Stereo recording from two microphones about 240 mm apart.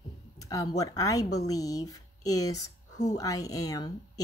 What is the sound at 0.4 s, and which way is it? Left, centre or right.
Speech, centre.